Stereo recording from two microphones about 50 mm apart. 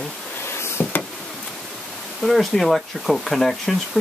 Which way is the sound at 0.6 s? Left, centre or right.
Left.